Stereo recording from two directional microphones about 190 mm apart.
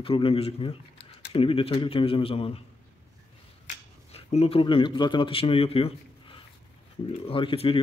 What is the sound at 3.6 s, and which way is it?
Speech, 35° left (ahead or behind).